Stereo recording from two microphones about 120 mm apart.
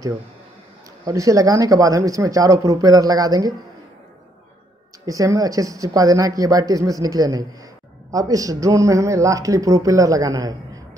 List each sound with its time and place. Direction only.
1.0 s a man's voice: 30° right (ahead or behind)
5.0 s a man's voice: 30° right (ahead or behind)